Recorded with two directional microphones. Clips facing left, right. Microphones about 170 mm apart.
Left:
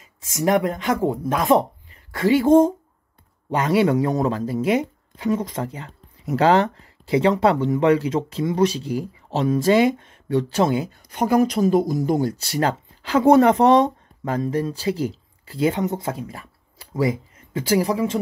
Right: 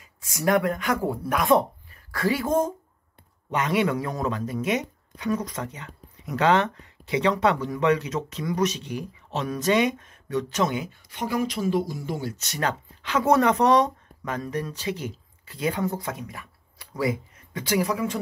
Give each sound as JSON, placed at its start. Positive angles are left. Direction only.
{"t": 0.2, "sound": "speech", "side_deg": 20}